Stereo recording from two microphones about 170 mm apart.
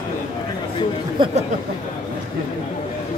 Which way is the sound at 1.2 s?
30° right (ahead or behind).